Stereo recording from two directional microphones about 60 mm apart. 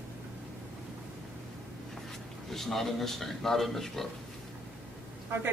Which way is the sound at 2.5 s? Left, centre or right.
Centre.